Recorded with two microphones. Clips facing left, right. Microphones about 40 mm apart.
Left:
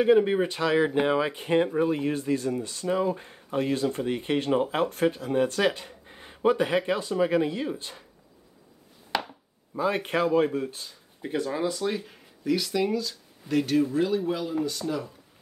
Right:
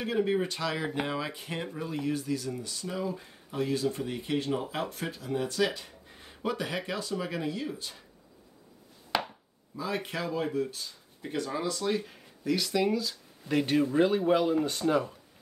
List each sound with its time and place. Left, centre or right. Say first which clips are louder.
0.0 s speech: left 8 dB; centre
9.1 s chopping: left 1 dB; centre
9.8 s speech: left 8 dB; left
10.8 s speech: left 3 dB; centre
13.9 s a man's voice: right 2 dB; right